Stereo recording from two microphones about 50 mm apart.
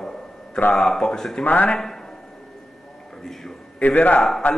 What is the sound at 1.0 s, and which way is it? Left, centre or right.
Speech, centre.